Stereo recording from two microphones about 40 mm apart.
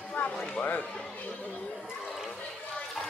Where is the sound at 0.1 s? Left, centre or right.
Left.